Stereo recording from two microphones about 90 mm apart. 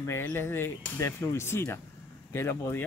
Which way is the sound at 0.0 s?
25° left (ahead or behind).